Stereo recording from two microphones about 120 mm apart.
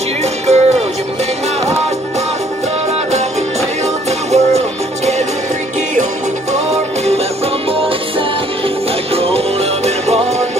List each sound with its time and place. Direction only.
0.2 s music: 65° right (ahead or behind)
4.3 s music: 65° right (ahead or behind)
9.1 s music: 55° right (ahead or behind)